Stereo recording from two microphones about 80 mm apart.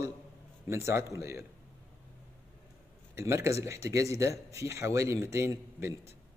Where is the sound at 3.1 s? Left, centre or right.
Right.